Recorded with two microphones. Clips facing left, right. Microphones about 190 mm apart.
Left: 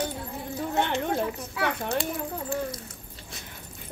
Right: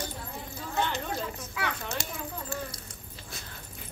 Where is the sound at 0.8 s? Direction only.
60° left (ahead or behind).